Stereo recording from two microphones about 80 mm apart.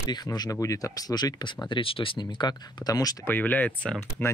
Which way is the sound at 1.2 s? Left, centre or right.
Left.